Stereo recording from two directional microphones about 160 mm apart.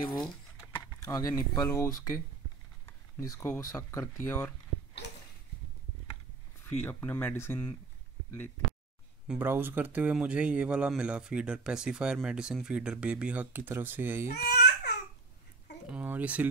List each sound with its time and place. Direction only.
1.0 s speech: 20° left (ahead or behind)
3.2 s speech: 20° left (ahead or behind)
5.0 s a sound: 90° left
6.8 s speech: 10° left (ahead or behind)
9.3 s speech: 10° right (ahead or behind)
14.3 s baby cry: 90° left
15.9 s speech: 10° right (ahead or behind)